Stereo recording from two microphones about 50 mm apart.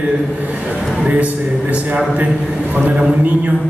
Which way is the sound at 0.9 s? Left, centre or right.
Right.